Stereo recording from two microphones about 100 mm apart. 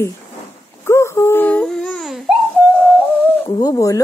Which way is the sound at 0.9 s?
30° left (ahead or behind).